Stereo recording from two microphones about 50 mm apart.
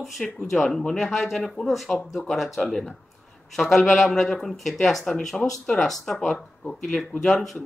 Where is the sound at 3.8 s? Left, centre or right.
Centre.